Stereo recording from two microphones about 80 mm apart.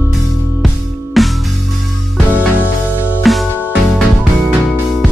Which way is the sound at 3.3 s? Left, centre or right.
Centre.